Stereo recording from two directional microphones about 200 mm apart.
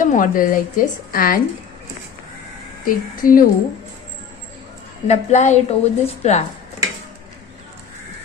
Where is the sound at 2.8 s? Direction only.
45° left (ahead or behind).